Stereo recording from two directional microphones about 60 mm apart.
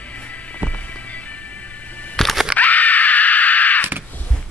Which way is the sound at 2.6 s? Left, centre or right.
Left.